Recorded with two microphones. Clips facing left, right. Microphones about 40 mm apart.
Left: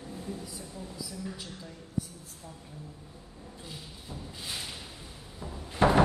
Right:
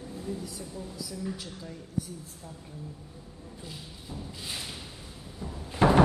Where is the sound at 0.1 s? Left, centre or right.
Centre.